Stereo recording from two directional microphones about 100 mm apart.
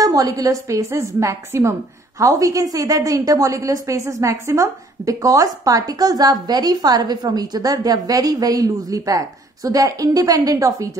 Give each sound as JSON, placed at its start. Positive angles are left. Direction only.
{"t": 0.0, "sound": "a woman's voice", "side_deg": -35}